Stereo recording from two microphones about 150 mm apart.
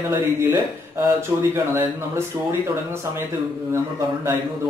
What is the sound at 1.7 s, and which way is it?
Speech, 15° right (ahead or behind).